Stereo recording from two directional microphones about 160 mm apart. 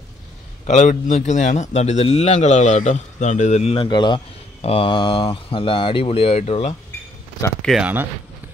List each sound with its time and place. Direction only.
0.7 s a man's voice: 50° left (ahead or behind)
7.6 s speech: centre (ahead or behind)